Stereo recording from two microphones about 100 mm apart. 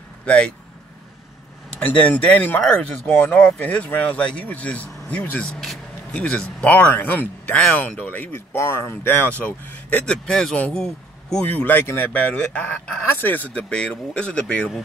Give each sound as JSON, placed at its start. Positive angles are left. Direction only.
{"t": 0.2, "sound": "speech", "side_deg": 10}
{"t": 1.7, "sound": "speech", "side_deg": 10}